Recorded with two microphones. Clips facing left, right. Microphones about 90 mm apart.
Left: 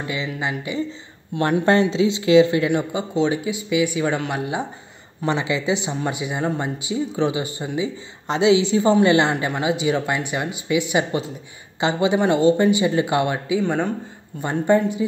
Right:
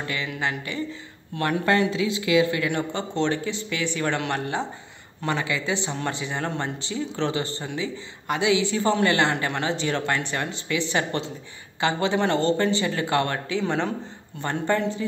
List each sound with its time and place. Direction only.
0.0 s speech: 15° left (ahead or behind)
2.9 s speech: 10° left (ahead or behind)